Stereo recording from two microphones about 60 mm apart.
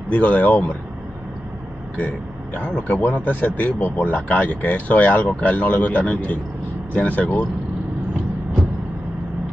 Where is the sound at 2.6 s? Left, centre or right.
Left.